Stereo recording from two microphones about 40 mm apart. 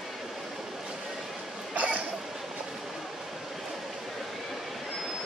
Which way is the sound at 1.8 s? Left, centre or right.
Right.